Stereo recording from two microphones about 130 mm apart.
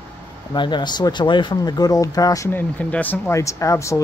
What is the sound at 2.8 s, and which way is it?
Speech, 10° left (ahead or behind).